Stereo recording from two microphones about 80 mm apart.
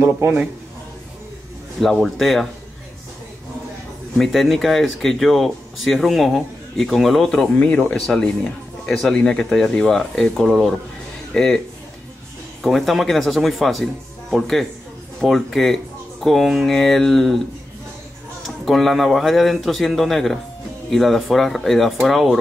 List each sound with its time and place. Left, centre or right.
0.0 s a man's voice: right
1.8 s speech: centre
4.2 s a man's voice: centre
12.6 s speech: centre
18.7 s speech: centre